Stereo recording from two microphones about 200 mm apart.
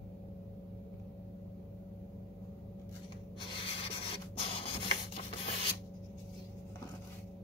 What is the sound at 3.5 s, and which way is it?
Printer, 25° left (ahead or behind).